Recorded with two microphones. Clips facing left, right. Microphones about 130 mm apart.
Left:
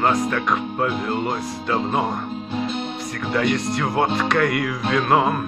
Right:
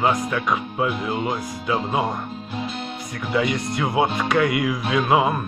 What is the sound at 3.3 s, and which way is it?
Speech, 5° right (ahead or behind).